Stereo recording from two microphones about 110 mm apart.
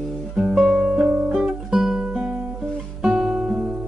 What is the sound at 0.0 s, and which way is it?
Music, 5° right (ahead or behind).